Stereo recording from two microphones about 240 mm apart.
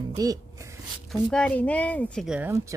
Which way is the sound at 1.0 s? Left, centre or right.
Centre.